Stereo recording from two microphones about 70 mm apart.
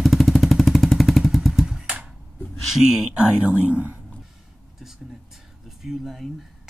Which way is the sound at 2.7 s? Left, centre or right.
Centre.